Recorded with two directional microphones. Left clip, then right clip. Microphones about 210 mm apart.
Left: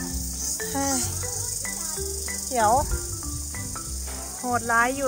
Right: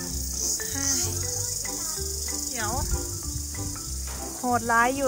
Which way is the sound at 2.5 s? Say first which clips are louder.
Left 13 dB; 5° left (ahead or behind).